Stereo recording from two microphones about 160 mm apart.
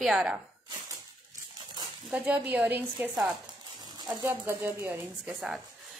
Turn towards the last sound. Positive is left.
turn(degrees=-5)  # may be behind; listen again after turning